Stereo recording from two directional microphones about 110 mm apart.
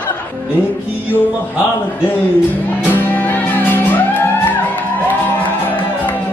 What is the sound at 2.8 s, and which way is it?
Music, 15° left (ahead or behind).